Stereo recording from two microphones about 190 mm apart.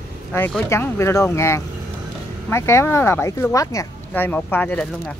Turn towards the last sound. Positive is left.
turn(degrees=10)  # may be behind; listen again after turning